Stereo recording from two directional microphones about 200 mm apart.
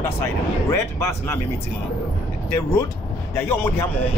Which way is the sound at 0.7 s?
15° left (ahead or behind).